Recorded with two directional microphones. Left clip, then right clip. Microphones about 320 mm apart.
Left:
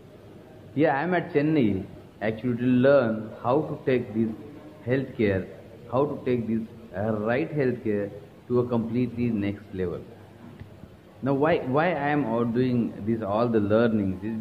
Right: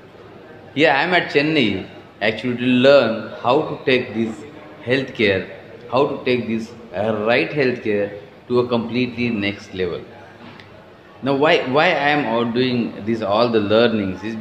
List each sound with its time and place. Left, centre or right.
0.7 s a man's voice: centre
11.2 s a man's voice: centre